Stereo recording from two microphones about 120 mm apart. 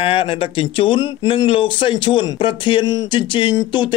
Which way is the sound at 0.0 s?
50° left (ahead or behind).